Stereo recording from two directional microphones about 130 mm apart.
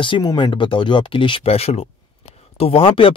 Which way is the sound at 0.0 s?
35° left (ahead or behind).